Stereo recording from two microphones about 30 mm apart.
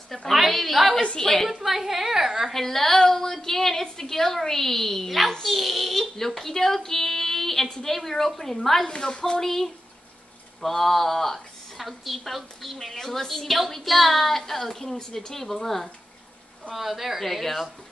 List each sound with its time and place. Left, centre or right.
0.3 s a woman's voice: centre
1.6 s a woman's voice: centre
2.5 s a woman's voice: centre
8.8 s a woman's voice: left
9.4 s a woman's voice: centre
16.7 s a woman's voice: centre
17.2 s a woman's voice: centre